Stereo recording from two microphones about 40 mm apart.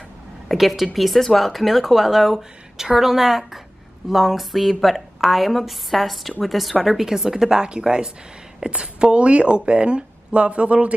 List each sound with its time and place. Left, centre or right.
0.5 s speech: centre; by 10.9 s right